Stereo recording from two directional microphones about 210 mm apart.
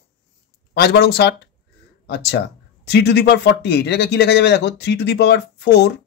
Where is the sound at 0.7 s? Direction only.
50° left (ahead or behind).